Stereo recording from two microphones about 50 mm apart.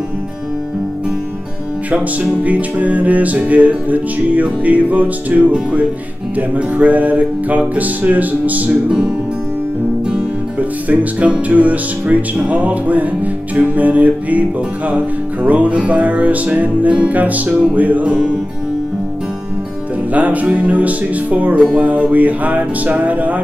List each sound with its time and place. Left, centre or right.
2.4 s music: right
8.8 s music: right
10.6 s music: right
20.1 s music: right